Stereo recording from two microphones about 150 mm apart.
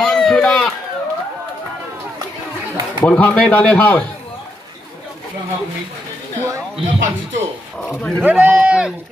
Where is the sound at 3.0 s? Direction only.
10° left (ahead or behind).